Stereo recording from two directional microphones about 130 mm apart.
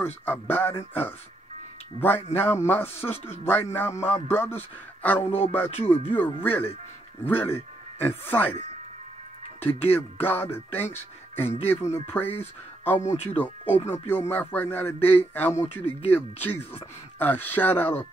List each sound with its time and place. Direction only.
0.0 s speech: 15° left (ahead or behind)
2.0 s speech: 15° left (ahead or behind)
5.2 s a sound: 50° left (ahead or behind)
5.9 s speech: 15° left (ahead or behind)
9.6 s speech: 15° left (ahead or behind)
13.0 s speech: 55° left (ahead or behind)
13.3 s speech: 15° left (ahead or behind)